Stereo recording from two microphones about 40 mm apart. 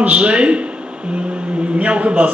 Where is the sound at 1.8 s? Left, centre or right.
Right.